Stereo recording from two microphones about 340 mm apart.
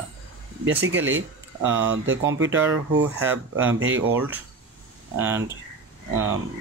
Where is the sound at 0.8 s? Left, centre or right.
Right.